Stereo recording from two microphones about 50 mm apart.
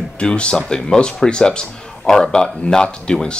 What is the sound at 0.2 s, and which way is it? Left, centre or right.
A man's voice, left.